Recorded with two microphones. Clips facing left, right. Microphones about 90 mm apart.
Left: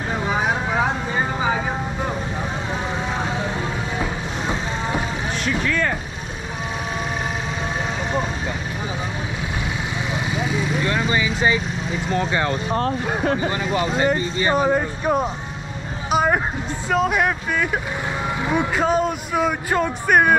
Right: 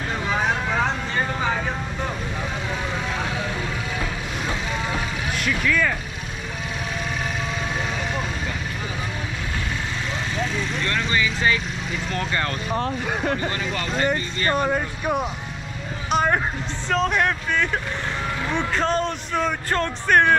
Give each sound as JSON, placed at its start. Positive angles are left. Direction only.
{"t": 0.1, "sound": "vehicle", "side_deg": 10}
{"t": 4.0, "sound": "vehicle", "side_deg": 20}
{"t": 10.1, "sound": "vehicle", "side_deg": 10}
{"t": 12.1, "sound": "speech", "side_deg": 15}
{"t": 16.1, "sound": "a sound", "side_deg": 5}
{"t": 16.9, "sound": "speech", "side_deg": 5}